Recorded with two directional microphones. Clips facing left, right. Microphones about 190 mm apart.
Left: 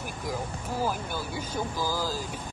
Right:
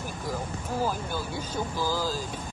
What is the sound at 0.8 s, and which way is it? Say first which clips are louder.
Speech: even; 10° left (ahead or behind).